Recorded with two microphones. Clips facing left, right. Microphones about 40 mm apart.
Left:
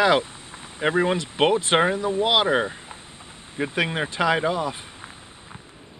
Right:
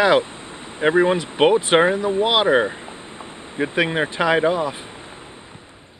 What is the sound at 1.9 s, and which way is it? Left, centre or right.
Speech, right.